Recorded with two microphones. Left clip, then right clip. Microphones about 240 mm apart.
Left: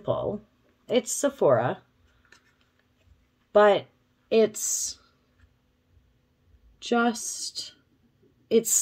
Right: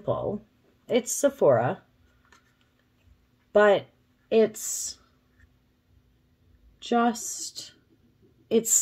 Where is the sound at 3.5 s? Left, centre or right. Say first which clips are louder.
Left 1 dB; centre.